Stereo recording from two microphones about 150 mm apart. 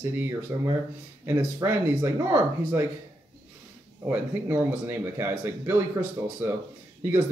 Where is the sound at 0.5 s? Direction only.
15° right (ahead or behind).